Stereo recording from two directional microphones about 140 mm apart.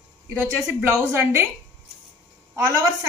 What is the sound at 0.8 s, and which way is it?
Speech, 15° right (ahead or behind).